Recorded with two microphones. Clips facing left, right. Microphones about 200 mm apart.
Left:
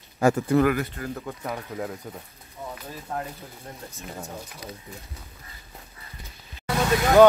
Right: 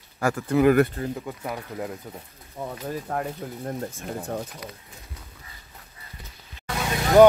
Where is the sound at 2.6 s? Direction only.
55° right (ahead or behind).